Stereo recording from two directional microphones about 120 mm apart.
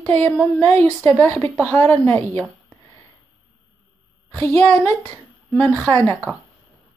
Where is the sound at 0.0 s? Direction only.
10° left (ahead or behind).